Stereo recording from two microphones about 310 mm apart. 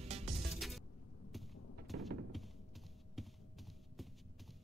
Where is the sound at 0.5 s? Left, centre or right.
Centre.